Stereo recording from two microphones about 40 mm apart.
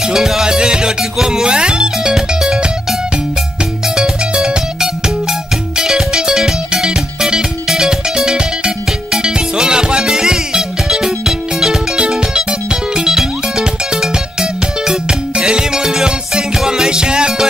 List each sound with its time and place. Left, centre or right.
0.0 s music: centre
5.8 s music: centre
12.9 s music: centre